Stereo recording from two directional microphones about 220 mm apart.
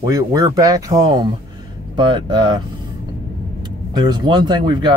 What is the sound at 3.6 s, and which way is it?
Speech, 20° right (ahead or behind).